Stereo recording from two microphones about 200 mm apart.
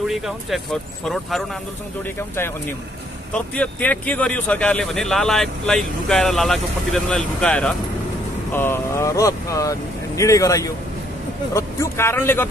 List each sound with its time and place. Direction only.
0.0 s speech: centre (ahead or behind)
2.1 s speech: 10° left (ahead or behind)